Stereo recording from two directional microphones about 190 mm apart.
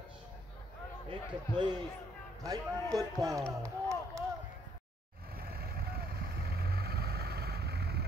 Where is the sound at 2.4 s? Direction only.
20° right (ahead or behind).